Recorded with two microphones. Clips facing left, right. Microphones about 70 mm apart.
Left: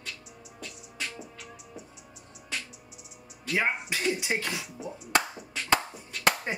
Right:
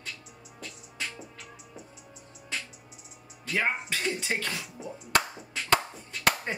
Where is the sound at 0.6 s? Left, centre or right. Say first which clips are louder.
Even; centre.